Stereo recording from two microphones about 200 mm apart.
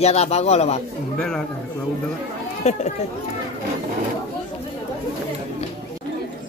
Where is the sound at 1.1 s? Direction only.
5° left (ahead or behind).